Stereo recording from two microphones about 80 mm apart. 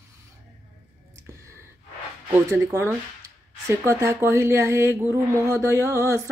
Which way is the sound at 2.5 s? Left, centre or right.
Right.